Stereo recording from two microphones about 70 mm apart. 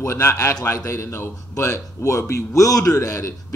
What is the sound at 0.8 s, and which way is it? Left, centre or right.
Speech, left.